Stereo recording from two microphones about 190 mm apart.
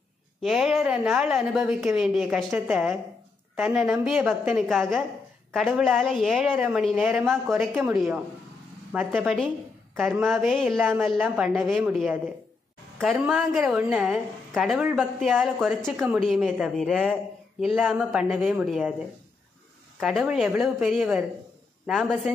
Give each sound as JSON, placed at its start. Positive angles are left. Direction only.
{"t": 0.4, "sound": "a woman's voice", "side_deg": 0}
{"t": 20.0, "sound": "a woman's voice", "side_deg": 0}